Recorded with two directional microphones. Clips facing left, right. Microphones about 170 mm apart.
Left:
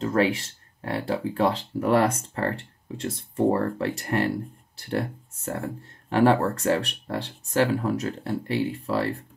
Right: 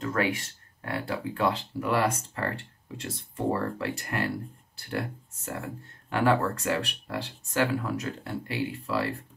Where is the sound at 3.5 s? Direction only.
40° left (ahead or behind).